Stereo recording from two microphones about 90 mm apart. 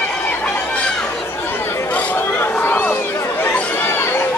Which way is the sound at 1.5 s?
25° left (ahead or behind).